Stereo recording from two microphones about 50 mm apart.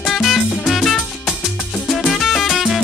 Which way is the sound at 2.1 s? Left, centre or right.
Centre.